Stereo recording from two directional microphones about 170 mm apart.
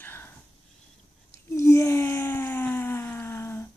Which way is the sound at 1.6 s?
15° left (ahead or behind).